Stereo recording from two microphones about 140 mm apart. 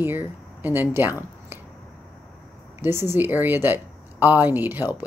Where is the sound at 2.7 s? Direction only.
15° right (ahead or behind).